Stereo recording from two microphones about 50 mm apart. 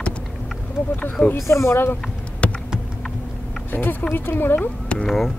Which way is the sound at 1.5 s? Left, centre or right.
Left.